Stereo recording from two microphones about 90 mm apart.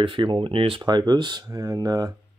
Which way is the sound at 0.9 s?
55° right (ahead or behind).